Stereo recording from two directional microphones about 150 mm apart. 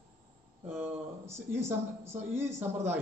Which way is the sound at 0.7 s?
15° right (ahead or behind).